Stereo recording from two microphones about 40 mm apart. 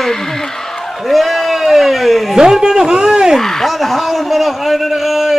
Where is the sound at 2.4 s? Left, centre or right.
Centre.